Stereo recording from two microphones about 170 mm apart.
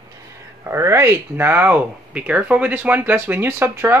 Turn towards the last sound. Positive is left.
turn(degrees=-15)  # may be behind; listen again after turning